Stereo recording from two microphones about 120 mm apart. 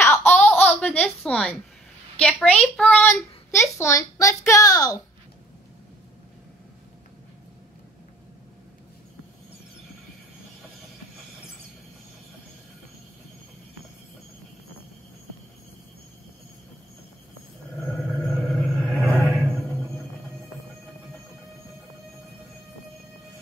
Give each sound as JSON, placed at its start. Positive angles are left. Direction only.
{"t": 0.0, "sound": "baby laughter", "side_deg": 15}
{"t": 2.1, "sound": "a woman's voice", "side_deg": 10}
{"t": 18.3, "sound": "a sound", "side_deg": 0}
{"t": 18.9, "sound": "music", "side_deg": 20}